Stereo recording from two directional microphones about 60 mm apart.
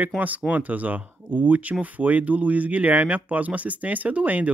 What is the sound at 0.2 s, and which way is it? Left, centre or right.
Speech, right.